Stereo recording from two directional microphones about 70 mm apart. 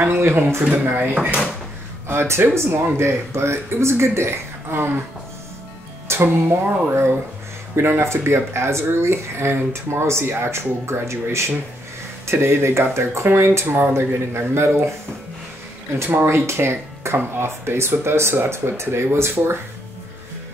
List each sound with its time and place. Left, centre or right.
0.0 s speech: right
2.0 s speech: right
6.0 s speech: right
16.0 s speech: right